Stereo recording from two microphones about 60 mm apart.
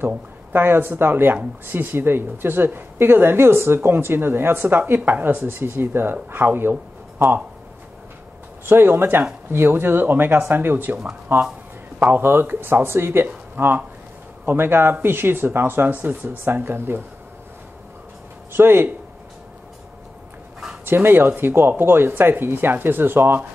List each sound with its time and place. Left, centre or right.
0.5 s a woman's voice: right
8.6 s a woman's voice: right
18.5 s a woman's voice: right
20.8 s a woman's voice: right